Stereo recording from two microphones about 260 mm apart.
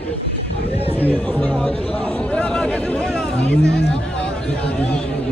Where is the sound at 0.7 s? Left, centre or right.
Left.